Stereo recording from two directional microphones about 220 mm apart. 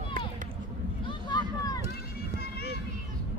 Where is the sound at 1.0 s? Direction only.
20° left (ahead or behind).